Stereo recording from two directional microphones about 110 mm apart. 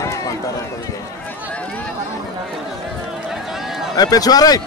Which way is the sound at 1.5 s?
10° left (ahead or behind).